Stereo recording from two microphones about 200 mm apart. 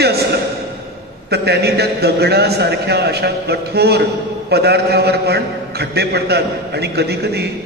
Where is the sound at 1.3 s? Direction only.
55° right (ahead or behind).